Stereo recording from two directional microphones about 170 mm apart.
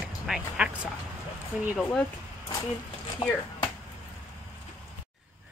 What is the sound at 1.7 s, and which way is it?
Speech, 10° left (ahead or behind).